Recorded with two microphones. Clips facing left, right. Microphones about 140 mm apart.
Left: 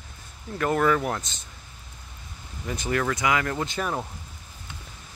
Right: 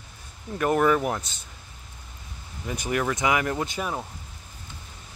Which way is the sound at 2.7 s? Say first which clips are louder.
Even; 15° right (ahead or behind).